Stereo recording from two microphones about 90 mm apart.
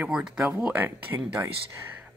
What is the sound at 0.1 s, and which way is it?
Speech, 5° right (ahead or behind).